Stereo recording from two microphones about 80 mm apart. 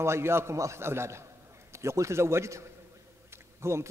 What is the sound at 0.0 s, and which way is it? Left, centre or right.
A man's voice, right.